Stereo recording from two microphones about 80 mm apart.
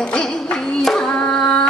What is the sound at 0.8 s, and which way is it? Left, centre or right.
Singing, centre.